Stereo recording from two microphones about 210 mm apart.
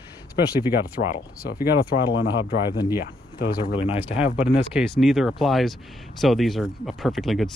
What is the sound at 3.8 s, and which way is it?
Speech, 25° left (ahead or behind).